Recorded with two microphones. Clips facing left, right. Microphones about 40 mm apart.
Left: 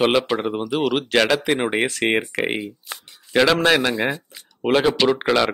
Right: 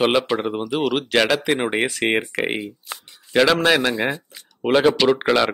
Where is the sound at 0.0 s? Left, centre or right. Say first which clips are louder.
Even; centre.